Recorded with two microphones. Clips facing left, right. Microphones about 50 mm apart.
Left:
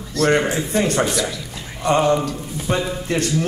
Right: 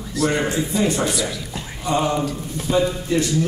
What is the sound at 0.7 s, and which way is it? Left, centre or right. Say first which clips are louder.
Speech: left 3 dB; left.